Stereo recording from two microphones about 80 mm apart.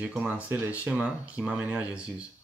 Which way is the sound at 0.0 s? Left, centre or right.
Centre.